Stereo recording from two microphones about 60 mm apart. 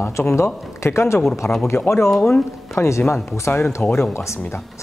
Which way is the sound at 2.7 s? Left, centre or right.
Left.